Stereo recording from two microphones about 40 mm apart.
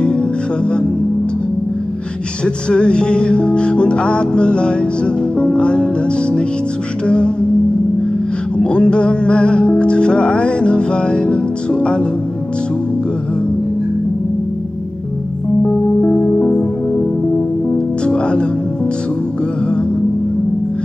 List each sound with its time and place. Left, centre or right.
2.4 s music: left
8.5 s music: left
15.6 s music: left
18.0 s music: left